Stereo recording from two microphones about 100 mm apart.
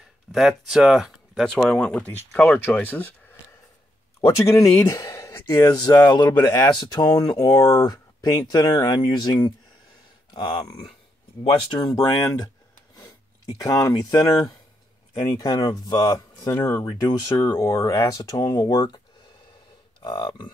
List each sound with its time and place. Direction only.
0.3 s speech: centre (ahead or behind); by 3.3 s 20° left (ahead or behind)
4.2 s speech: 30° left (ahead or behind); by 10.7 s 50° left (ahead or behind)
11.7 s speech: 40° left (ahead or behind)
13.7 s speech: 35° left (ahead or behind)
15.1 s speech: 45° left (ahead or behind)
20.1 s speech: 50° left (ahead or behind)